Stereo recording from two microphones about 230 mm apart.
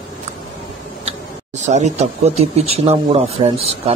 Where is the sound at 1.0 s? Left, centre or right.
Right.